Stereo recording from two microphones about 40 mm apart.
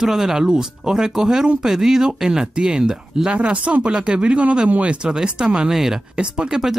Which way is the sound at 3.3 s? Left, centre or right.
Right.